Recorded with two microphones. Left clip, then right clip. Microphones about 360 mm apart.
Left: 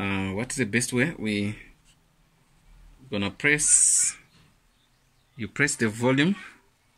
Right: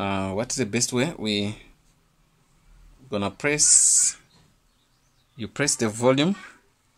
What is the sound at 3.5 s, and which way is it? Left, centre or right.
Speech, right.